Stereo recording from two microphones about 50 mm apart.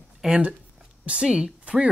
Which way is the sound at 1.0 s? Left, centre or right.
Centre.